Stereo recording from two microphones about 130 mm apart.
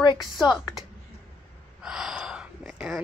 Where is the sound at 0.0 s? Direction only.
35° left (ahead or behind).